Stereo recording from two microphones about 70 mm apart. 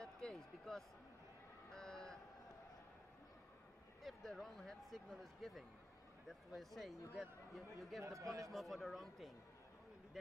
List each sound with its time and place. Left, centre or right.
0.0 s a sound: centre
4.0 s a man's voice: centre
8.0 s a man's voice: right
8.5 s a man's voice: centre